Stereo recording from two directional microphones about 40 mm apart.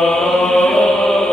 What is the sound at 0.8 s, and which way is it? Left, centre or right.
Chant, centre.